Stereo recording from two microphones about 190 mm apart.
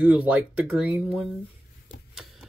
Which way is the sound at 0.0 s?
5° right (ahead or behind).